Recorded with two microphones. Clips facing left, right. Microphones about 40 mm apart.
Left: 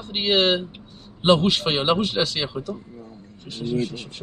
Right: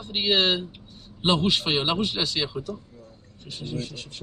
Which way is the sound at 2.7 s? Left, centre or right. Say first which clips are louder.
Left 3 dB; left.